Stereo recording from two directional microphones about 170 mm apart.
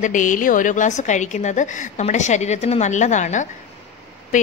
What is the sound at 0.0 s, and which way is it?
A woman's voice, 50° left (ahead or behind).